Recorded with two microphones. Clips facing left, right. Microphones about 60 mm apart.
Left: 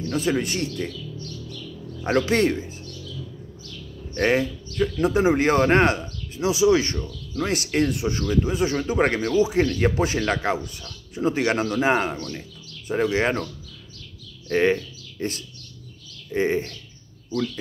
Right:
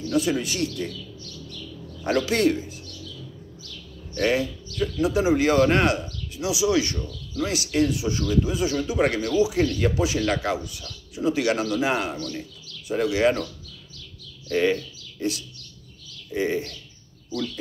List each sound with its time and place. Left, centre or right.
0.0 s speech: left
0.7 s bird: left
2.0 s speech: left
4.1 s speech: left
14.5 s speech: left